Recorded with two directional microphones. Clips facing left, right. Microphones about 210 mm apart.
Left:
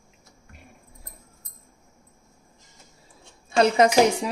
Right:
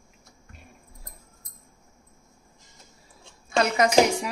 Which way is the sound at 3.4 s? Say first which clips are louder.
Left 4 dB; 30° left (ahead or behind).